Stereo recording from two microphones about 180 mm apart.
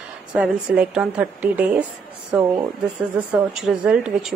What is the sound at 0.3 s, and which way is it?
A woman's voice, 5° right (ahead or behind).